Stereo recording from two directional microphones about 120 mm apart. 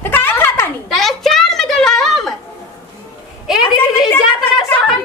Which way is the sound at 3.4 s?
5° right (ahead or behind).